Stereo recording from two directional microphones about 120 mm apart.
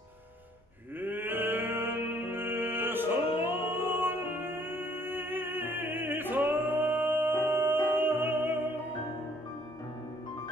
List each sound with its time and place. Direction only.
1.0 s music: 15° right (ahead or behind)